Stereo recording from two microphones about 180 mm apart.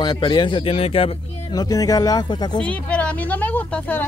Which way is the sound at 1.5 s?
20° left (ahead or behind).